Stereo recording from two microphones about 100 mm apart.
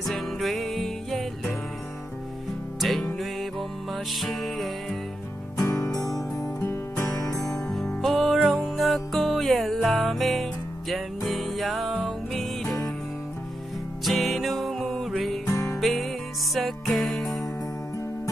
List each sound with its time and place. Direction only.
0.0 s music: centre (ahead or behind)
2.8 s music: centre (ahead or behind)
5.6 s music: 35° left (ahead or behind)
7.7 s music: centre (ahead or behind)
8.4 s music: 10° right (ahead or behind)
8.7 s music: centre (ahead or behind)
12.6 s music: 30° left (ahead or behind)
14.0 s music: centre (ahead or behind)
15.4 s music: 30° left (ahead or behind)
15.8 s music: centre (ahead or behind)